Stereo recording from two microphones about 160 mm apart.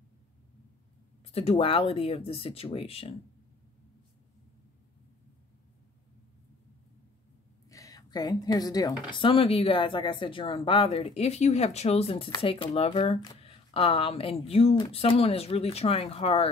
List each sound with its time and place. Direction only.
1.3 s speech: 40° left (ahead or behind)
7.7 s speech: 20° left (ahead or behind); by 16.4 s 35° left (ahead or behind)